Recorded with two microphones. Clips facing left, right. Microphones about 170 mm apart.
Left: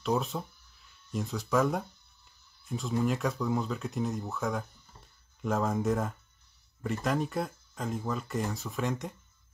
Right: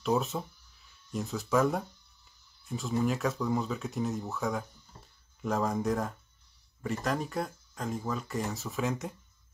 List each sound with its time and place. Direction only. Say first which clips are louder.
0.0 s speech: right 1 dB; centre (ahead or behind)